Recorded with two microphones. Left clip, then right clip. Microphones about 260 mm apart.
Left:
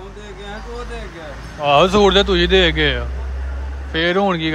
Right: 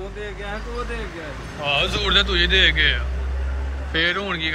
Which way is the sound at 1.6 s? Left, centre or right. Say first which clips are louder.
Left 9 dB; left.